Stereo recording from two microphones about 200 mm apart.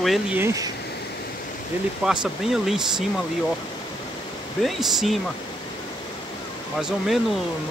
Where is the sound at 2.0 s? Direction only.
Centre (ahead or behind).